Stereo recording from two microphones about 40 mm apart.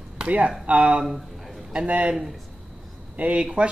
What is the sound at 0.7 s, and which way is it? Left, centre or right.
Speech, right.